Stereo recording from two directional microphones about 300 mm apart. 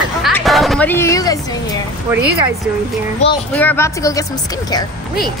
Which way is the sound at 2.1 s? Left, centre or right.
Centre.